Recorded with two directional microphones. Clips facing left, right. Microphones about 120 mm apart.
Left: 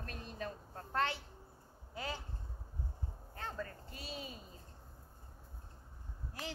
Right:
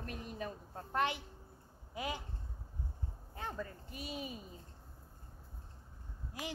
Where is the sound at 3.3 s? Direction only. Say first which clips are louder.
Right 1 dB; 15° right (ahead or behind).